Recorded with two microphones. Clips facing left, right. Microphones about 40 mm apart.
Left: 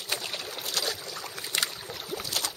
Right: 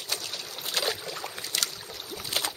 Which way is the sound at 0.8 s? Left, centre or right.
Right.